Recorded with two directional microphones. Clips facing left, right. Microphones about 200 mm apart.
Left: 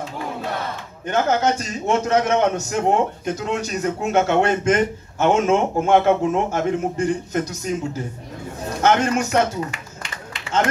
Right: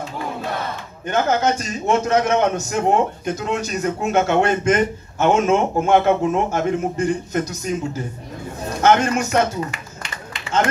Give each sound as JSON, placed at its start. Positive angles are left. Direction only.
{"t": 1.0, "sound": "a man's voice", "side_deg": 30}
{"t": 8.8, "sound": "a man's voice", "side_deg": 30}
{"t": 9.7, "sound": "a sound", "side_deg": 5}